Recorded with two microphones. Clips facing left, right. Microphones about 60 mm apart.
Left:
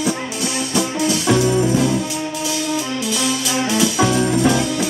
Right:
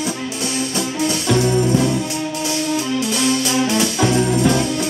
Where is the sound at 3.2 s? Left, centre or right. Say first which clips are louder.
Right 3 dB; centre.